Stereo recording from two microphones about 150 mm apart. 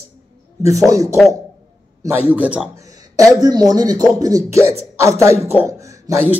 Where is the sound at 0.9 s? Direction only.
20° right (ahead or behind).